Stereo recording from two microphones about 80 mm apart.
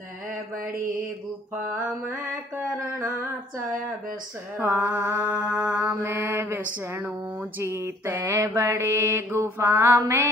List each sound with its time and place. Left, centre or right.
4.6 s mantra: right
7.6 s mantra: right
8.4 s mantra: right
8.8 s mantra: right
9.9 s mantra: right